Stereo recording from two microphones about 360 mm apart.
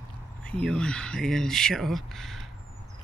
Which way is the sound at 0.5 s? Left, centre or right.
Centre.